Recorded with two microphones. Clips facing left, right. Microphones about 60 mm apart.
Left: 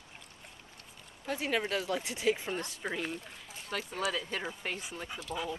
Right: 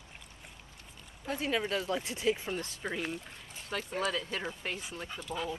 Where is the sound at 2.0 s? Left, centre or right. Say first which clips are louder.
Even; centre.